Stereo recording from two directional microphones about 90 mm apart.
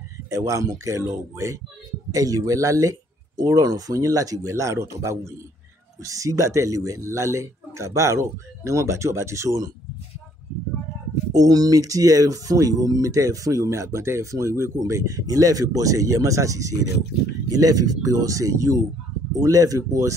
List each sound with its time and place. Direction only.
0.3 s speech: 35° right (ahead or behind)
11.3 s speech: 40° right (ahead or behind)